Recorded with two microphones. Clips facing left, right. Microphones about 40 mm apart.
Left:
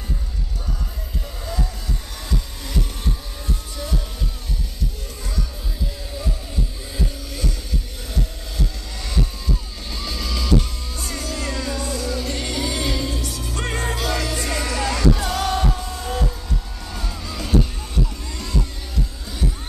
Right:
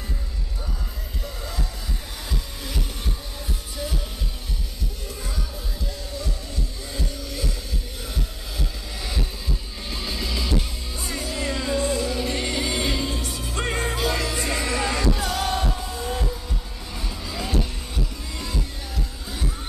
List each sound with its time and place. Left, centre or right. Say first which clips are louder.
1.4 s music: left 6 dB; centre
2.3 s heart murmur: left 6 dB; centre
3.7 s music: even; centre
6.9 s music: left 2 dB; centre
8.1 s heart sounds: left 6 dB; centre
9.8 s music: even; centre
15.1 s music: left 2 dB; centre